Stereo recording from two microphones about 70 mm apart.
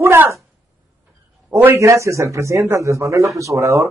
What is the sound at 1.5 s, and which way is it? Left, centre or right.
Speech, right.